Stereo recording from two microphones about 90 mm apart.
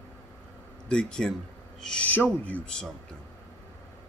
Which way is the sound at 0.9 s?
10° left (ahead or behind).